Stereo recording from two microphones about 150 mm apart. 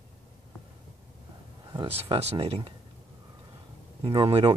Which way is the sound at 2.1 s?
40° right (ahead or behind).